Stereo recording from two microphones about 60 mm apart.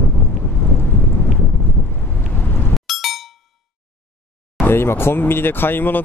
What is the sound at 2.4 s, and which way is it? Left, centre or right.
Ding, left.